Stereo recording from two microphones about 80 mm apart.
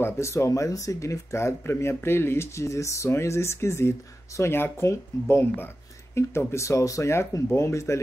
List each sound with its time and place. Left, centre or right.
0.0 s speech: left